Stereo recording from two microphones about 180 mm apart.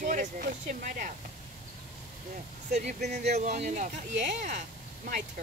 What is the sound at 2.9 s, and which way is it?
Speech, 65° right (ahead or behind).